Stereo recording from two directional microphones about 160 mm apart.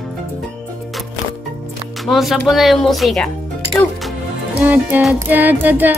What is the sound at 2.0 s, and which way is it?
A woman's voice, centre (ahead or behind).